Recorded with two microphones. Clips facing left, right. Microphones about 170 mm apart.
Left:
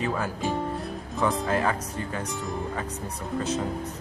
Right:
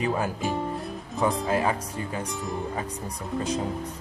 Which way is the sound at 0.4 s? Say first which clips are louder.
Even; centre (ahead or behind).